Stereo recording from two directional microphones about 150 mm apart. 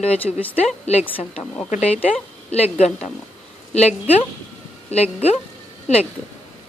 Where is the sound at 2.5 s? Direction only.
45° left (ahead or behind).